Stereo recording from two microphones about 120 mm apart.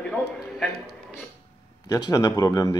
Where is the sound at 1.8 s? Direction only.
30° left (ahead or behind).